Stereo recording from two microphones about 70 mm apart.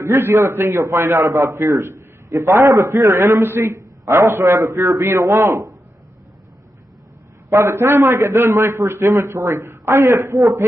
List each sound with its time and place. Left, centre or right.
0.0 s a man's voice: right
2.6 s a man's voice: right
3.3 s a man's voice: right
7.4 s a man's voice: right